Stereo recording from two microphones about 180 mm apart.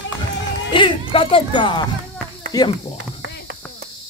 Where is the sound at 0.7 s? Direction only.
25° left (ahead or behind).